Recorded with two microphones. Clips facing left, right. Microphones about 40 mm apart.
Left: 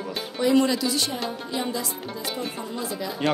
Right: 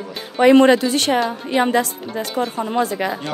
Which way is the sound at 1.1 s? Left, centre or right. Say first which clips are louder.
Right 11 dB; right.